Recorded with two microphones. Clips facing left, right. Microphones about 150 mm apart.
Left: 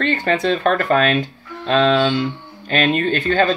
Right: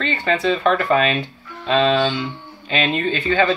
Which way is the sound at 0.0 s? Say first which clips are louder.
Left 2 dB; 60° left (ahead or behind).